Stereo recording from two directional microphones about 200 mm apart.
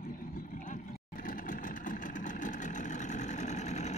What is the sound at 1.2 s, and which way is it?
Vehicle, 40° left (ahead or behind).